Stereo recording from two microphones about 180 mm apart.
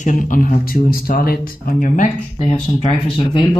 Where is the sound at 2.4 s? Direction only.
30° left (ahead or behind).